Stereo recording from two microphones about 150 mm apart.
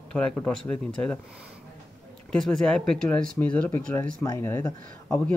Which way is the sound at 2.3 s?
5° left (ahead or behind).